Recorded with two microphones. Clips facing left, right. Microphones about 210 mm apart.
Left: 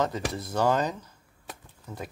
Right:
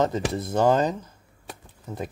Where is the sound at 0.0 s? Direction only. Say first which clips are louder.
Right 5 dB; 25° right (ahead or behind).